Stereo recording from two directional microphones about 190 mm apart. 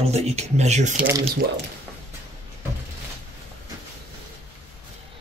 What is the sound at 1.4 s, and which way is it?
Speech, 60° right (ahead or behind).